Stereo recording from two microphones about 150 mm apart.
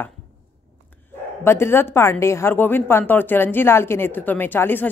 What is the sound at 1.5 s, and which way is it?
A woman's voice, 15° left (ahead or behind).